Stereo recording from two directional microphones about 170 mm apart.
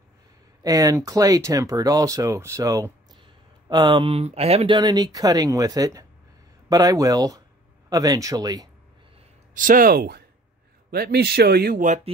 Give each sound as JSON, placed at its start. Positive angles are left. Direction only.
{"t": 0.7, "sound": "speech", "side_deg": -20}
{"t": 9.5, "sound": "speech", "side_deg": -55}